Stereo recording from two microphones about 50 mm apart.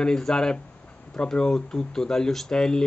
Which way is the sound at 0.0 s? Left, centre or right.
Centre.